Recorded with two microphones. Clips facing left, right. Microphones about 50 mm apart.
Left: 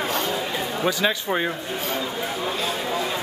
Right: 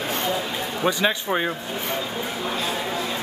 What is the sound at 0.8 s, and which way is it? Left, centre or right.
Speech, centre.